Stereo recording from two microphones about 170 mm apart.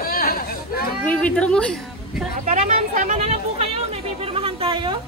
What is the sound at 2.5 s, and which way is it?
Speech, 45° right (ahead or behind).